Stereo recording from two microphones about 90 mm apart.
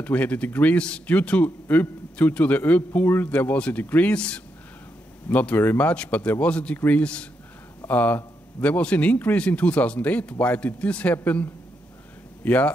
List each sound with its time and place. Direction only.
0.0 s a man's voice: 15° left (ahead or behind)
12.4 s a man's voice: 15° left (ahead or behind)